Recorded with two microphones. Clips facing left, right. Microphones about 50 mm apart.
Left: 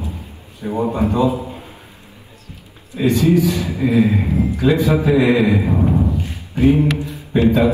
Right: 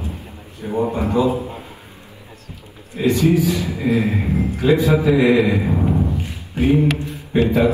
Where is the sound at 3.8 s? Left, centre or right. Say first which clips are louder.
Left 4 dB; right.